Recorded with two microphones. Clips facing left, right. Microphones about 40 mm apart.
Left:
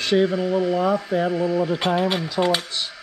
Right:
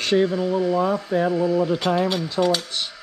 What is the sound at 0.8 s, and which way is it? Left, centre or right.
Speech, left.